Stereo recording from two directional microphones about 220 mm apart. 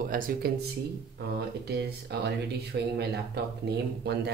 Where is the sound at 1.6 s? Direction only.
50° right (ahead or behind).